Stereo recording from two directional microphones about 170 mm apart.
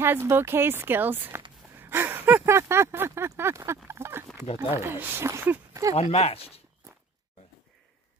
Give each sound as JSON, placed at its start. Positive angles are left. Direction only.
{"t": 0.0, "sound": "speech", "side_deg": -15}
{"t": 1.8, "sound": "a sound", "side_deg": -10}
{"t": 4.8, "sound": "speech", "side_deg": -10}
{"t": 5.9, "sound": "speech", "side_deg": 35}